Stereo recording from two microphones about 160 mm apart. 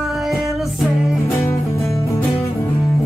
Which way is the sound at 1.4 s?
20° left (ahead or behind).